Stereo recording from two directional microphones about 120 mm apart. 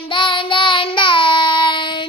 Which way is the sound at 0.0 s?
45° left (ahead or behind).